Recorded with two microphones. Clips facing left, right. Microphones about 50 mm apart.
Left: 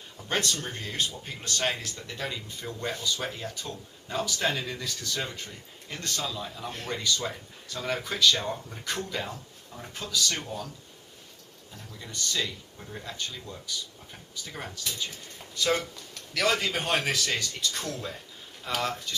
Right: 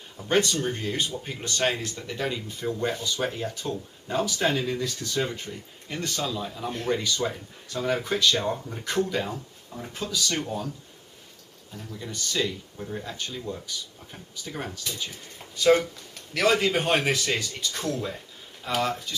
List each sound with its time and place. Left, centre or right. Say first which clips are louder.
0.2 s speech: right 6 dB; centre
1.3 s speech: right 5 dB; centre
11.7 s speech: right 5 dB; centre